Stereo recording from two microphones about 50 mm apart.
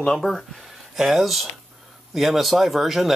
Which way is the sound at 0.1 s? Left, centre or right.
Centre.